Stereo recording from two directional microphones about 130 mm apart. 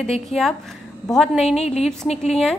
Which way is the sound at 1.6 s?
55° left (ahead or behind).